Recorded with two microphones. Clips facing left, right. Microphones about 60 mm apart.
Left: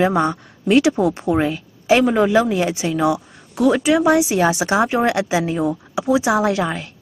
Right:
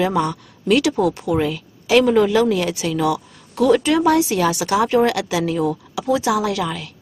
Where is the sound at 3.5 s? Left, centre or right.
Centre; by 6.9 s left.